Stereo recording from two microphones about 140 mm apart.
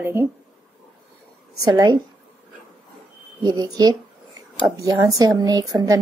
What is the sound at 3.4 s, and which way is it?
Speech, 30° right (ahead or behind).